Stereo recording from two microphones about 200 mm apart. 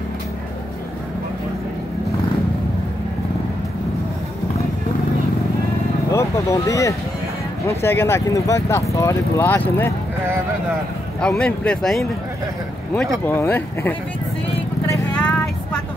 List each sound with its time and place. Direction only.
6.1 s speech: 15° left (ahead or behind)
11.1 s speech: 5° left (ahead or behind)
14.9 s vehicle: 5° left (ahead or behind)